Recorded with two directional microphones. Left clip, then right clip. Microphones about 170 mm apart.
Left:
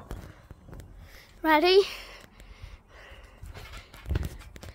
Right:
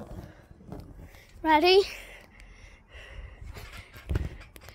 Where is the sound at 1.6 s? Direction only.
10° left (ahead or behind).